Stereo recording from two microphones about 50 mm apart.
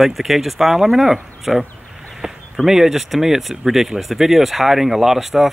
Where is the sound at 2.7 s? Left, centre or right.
Centre.